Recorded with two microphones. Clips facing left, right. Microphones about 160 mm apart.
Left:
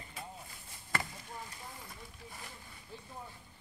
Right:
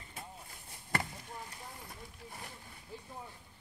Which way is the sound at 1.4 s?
60° right (ahead or behind).